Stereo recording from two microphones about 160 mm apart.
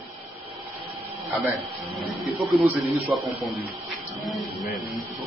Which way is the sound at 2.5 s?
5° right (ahead or behind).